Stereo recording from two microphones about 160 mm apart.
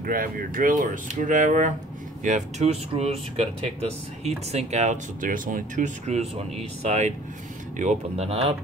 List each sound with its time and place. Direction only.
0.0 s speech: 60° right (ahead or behind); by 3.4 s 40° right (ahead or behind)
4.5 s speech: 45° right (ahead or behind)